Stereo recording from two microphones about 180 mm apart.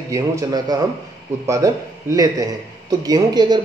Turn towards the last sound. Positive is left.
turn(degrees=-25)  # may be behind; listen again after turning